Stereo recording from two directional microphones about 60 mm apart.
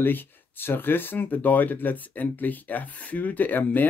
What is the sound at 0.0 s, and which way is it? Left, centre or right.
Speech, left.